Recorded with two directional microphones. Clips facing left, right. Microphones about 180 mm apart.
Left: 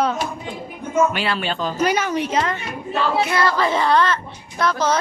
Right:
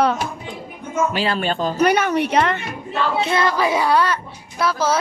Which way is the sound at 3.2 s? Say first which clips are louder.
Right 1 dB; 25° right (ahead or behind).